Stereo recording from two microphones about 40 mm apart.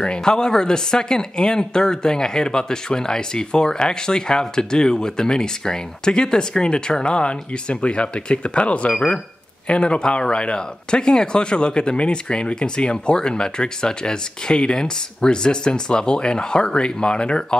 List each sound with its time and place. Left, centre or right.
0.0 s speech: left
8.9 s speech: centre